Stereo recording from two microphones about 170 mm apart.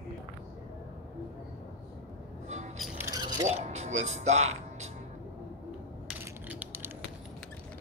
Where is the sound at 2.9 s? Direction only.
20° right (ahead or behind).